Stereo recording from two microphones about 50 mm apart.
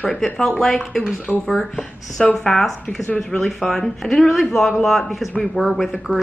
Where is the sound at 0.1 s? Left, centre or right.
Centre.